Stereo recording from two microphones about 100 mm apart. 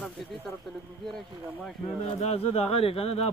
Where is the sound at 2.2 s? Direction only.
90° left.